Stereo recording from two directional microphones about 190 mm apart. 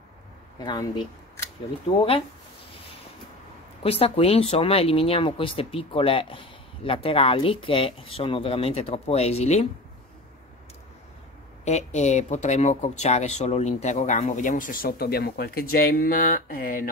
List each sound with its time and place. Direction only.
0.7 s speech: 20° left (ahead or behind)
3.8 s speech: 30° left (ahead or behind)
11.6 s speech: 35° left (ahead or behind)